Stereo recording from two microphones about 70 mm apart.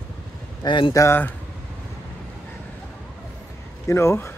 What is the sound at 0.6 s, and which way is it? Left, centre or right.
Speech, left.